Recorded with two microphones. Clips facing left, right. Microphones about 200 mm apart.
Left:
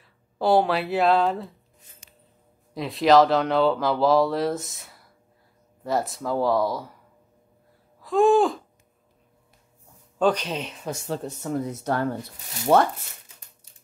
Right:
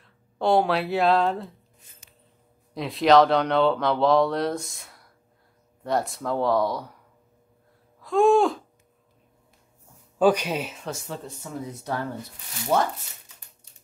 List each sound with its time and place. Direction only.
0.0 s speech: 5° left (ahead or behind)
2.7 s speech: centre (ahead or behind)
8.0 s a sound: centre (ahead or behind)
10.1 s speech: 10° right (ahead or behind)
11.2 s speech: 60° left (ahead or behind)
12.7 s speech: 70° left (ahead or behind)